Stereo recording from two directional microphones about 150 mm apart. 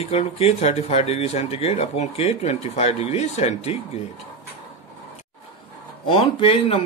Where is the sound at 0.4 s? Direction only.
45° left (ahead or behind).